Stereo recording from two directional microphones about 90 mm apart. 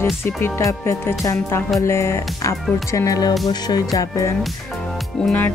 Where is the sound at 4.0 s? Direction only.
35° left (ahead or behind).